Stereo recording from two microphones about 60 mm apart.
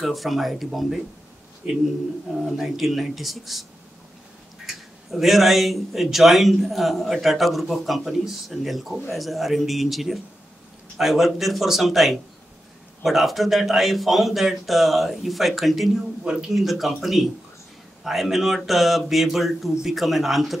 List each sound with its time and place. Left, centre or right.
0.0 s a man's voice: centre
2.3 s a man's voice: centre
4.6 s a man's voice: centre
16.3 s speech: centre
16.5 s a man's voice: centre